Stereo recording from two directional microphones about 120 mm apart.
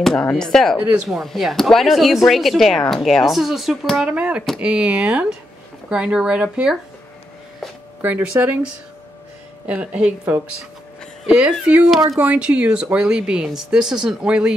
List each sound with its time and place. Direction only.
0.0 s speech: 5° left (ahead or behind)
8.0 s speech: 15° right (ahead or behind)
9.7 s speech: 10° right (ahead or behind)